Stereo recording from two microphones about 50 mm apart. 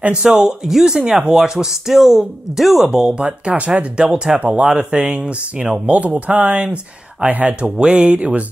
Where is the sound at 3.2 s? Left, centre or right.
Right.